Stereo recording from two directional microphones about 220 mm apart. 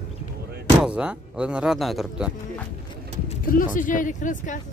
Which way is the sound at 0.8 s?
5° right (ahead or behind).